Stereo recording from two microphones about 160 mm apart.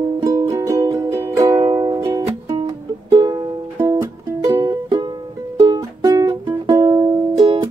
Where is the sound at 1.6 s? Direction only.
30° right (ahead or behind).